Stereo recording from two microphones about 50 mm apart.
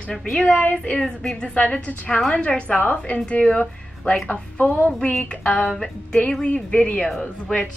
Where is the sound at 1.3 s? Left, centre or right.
Left.